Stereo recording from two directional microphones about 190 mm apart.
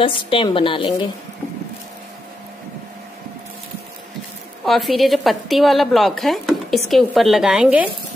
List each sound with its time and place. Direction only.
0.0 s a woman's voice: 25° left (ahead or behind)
4.6 s a woman's voice: centre (ahead or behind)